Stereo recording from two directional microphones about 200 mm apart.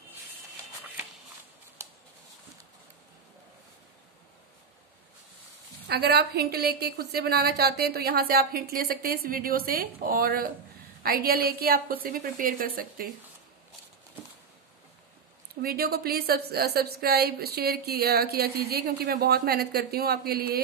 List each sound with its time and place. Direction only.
5.9 s a woman's voice: 55° right (ahead or behind)
15.6 s a woman's voice: 50° right (ahead or behind)